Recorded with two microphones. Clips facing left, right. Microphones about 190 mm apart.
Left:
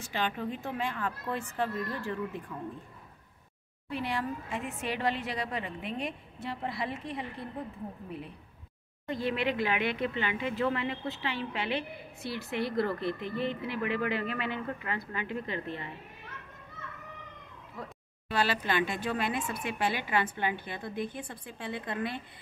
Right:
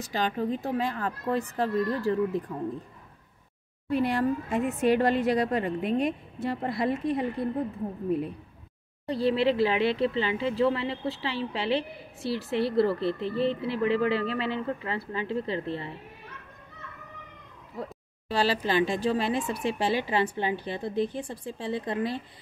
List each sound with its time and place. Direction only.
0.0 s speech: 40° right (ahead or behind)
3.9 s a woman's voice: 45° right (ahead or behind)
18.3 s speech: 35° right (ahead or behind)